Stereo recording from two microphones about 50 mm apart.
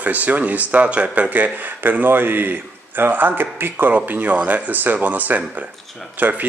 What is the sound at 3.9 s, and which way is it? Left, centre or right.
A man's voice, right.